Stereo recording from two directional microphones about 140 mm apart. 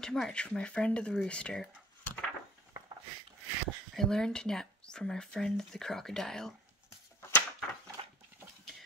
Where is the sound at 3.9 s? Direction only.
5° left (ahead or behind).